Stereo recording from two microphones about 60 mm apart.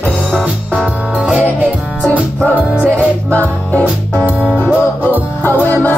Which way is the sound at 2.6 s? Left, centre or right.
Right.